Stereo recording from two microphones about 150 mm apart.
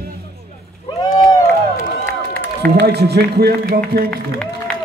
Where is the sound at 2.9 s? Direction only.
90° right.